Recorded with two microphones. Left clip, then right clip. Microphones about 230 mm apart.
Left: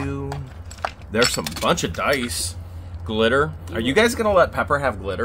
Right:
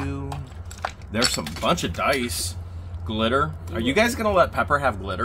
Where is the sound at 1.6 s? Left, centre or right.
Left.